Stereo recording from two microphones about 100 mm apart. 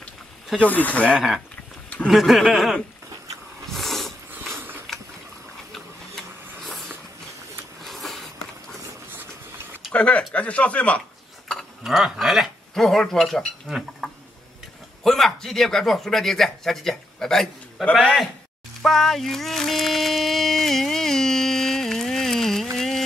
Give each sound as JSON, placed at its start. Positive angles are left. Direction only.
{"t": 0.6, "sound": "speech", "side_deg": 15}
{"t": 1.1, "sound": "speech", "side_deg": 0}
{"t": 3.7, "sound": "a sound", "side_deg": 0}
{"t": 4.3, "sound": "mechanisms", "side_deg": -20}
{"t": 5.7, "sound": "printer", "side_deg": 5}
{"t": 7.8, "sound": "a sound", "side_deg": 0}
{"t": 9.9, "sound": "speech", "side_deg": 10}
{"t": 11.4, "sound": "speech", "side_deg": 0}
{"t": 18.8, "sound": "a sound", "side_deg": 5}
{"t": 22.8, "sound": "music", "side_deg": 5}